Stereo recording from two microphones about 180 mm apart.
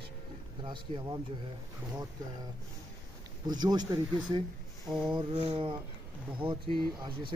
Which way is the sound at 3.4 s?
25° right (ahead or behind).